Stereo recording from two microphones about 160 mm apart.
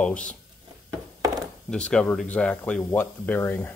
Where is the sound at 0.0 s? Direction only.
10° left (ahead or behind).